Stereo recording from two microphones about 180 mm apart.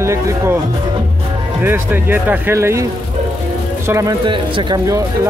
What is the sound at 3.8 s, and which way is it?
Speech, 20° right (ahead or behind).